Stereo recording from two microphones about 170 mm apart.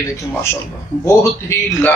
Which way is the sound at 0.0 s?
15° left (ahead or behind).